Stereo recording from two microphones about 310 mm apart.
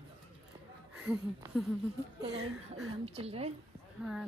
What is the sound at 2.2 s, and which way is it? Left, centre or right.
Speech, centre.